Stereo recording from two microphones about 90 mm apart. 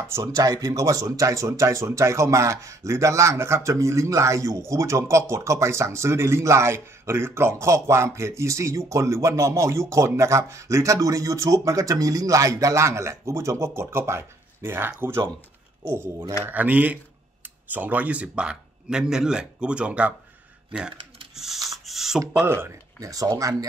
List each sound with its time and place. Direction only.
0.1 s speech: 40° right (ahead or behind); by 20.2 s 15° right (ahead or behind)
21.6 s a sound: centre (ahead or behind)
22.5 s speech: 25° right (ahead or behind)
22.9 s speech: 40° right (ahead or behind)